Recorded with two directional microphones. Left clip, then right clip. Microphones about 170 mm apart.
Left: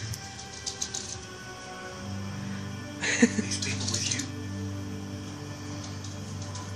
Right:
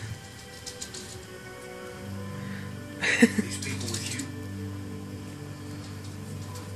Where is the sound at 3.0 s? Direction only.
20° right (ahead or behind).